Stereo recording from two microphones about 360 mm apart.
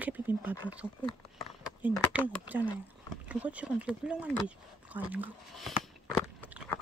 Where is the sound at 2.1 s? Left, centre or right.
Centre.